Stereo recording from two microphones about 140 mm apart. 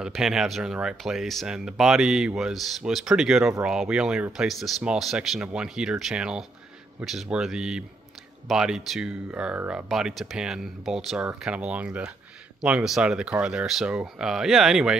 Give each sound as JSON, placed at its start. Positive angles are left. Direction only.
{"t": 0.0, "sound": "speech", "side_deg": -5}